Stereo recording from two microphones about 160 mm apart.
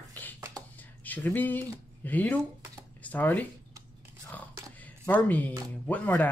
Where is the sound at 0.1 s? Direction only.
10° left (ahead or behind).